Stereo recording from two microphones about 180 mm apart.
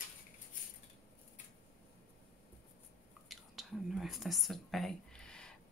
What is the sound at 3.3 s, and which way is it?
Whispering, centre (ahead or behind).